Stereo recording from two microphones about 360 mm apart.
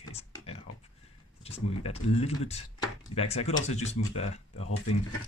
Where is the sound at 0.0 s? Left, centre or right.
Centre.